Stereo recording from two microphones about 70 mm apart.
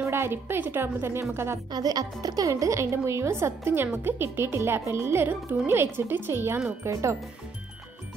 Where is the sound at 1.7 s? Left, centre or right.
Right.